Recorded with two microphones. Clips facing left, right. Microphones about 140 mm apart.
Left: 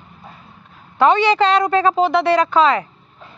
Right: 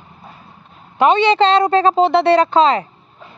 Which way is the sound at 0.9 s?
20° right (ahead or behind).